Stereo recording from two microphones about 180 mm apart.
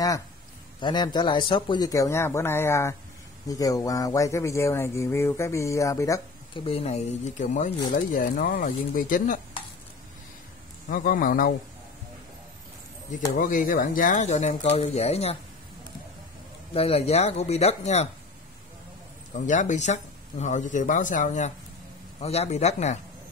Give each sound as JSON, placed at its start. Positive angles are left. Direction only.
{"t": 0.7, "sound": "speech", "side_deg": 25}
{"t": 6.6, "sound": "speech", "side_deg": 35}
{"t": 10.9, "sound": "speech", "side_deg": 50}
{"t": 13.4, "sound": "speech", "side_deg": 50}
{"t": 16.7, "sound": "speech", "side_deg": 35}
{"t": 19.3, "sound": "speech", "side_deg": 45}